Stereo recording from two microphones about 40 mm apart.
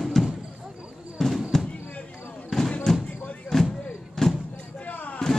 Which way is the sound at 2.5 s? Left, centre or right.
Centre.